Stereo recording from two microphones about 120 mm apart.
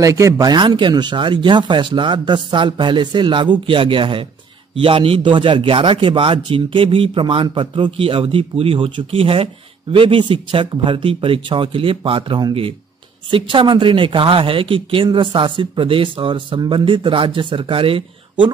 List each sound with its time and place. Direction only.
0.0 s a man's voice: 25° right (ahead or behind); by 18.0 s 50° right (ahead or behind)